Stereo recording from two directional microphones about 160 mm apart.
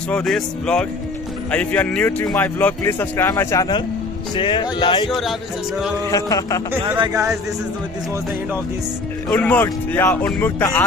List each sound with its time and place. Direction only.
0.1 s speech: 5° left (ahead or behind)
4.4 s speech: 30° left (ahead or behind)
6.0 s a sound: 20° left (ahead or behind)
7.0 s speech: 20° right (ahead or behind)
9.3 s speech: 10° left (ahead or behind)